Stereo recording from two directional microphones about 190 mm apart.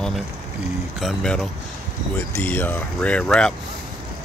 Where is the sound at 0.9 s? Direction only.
Centre (ahead or behind).